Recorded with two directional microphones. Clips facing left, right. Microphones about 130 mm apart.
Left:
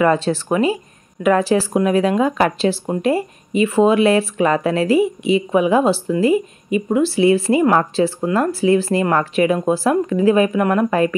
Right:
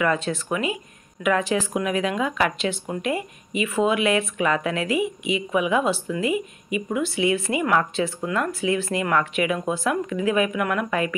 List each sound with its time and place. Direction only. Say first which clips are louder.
0.0 s speech: left 7 dB; 30° left (ahead or behind)